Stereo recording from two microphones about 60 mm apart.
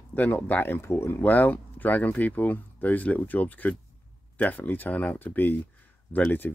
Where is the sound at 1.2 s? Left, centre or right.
Left.